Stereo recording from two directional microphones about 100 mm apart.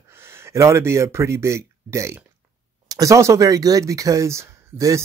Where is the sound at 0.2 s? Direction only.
25° right (ahead or behind).